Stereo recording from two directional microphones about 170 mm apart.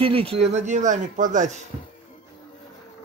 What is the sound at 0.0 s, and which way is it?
A man's voice, 30° right (ahead or behind).